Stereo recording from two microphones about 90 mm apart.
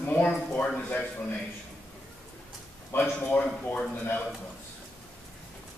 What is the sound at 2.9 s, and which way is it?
Speech, 20° left (ahead or behind).